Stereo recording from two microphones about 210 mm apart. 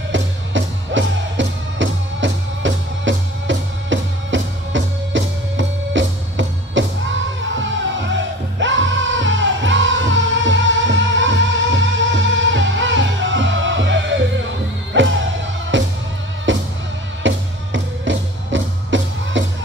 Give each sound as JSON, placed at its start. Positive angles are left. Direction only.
{"t": 0.1, "sound": "music", "side_deg": -60}